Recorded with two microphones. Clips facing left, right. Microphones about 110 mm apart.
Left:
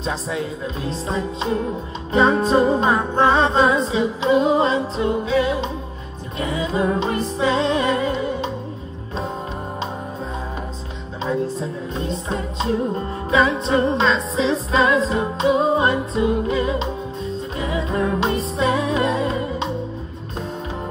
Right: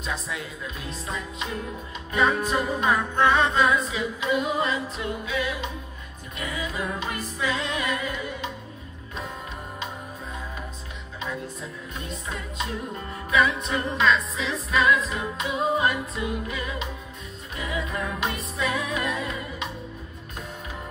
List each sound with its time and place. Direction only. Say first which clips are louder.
0.0 s music: left 7 dB; 30° left (ahead or behind)
11.2 s music: left 11 dB; 30° left (ahead or behind)